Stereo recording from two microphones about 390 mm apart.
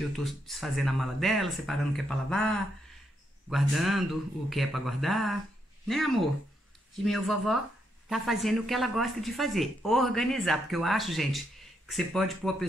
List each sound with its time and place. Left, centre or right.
0.0 s speech: centre